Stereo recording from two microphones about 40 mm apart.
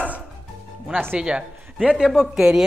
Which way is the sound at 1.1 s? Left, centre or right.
Right.